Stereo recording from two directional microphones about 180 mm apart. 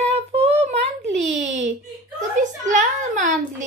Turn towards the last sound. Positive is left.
turn(degrees=-45)  # may be behind; listen again after turning